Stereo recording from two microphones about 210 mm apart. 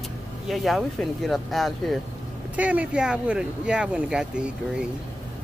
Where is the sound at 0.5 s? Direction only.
Centre (ahead or behind).